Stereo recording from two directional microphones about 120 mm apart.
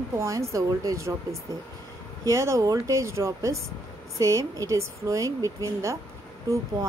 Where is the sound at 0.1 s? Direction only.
25° right (ahead or behind).